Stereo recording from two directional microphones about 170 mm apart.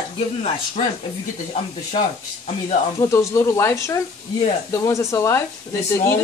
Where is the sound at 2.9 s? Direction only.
20° left (ahead or behind).